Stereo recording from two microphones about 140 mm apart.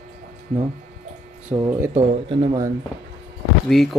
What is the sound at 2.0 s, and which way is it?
Speech, 50° right (ahead or behind).